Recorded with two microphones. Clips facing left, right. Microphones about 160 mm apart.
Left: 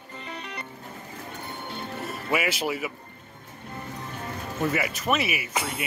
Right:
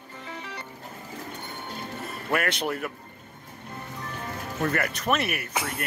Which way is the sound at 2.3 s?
5° left (ahead or behind).